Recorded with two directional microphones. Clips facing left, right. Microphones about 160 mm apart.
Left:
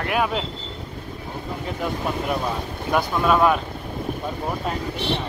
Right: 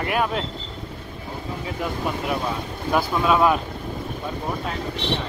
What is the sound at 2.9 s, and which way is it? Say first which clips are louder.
Speech: even; centre (ahead or behind).